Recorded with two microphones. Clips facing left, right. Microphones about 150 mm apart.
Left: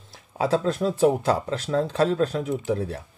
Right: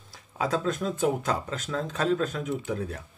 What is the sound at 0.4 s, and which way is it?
Speech, 30° left (ahead or behind).